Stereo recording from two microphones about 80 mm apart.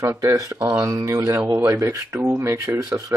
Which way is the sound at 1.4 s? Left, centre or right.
Right.